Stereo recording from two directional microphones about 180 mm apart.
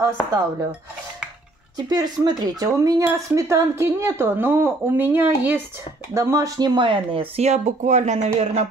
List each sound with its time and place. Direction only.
0.0 s speech: 15° right (ahead or behind)
1.8 s speech: 20° right (ahead or behind); by 8.6 s 40° right (ahead or behind)